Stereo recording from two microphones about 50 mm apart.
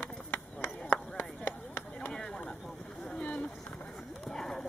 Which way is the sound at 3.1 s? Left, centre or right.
Left.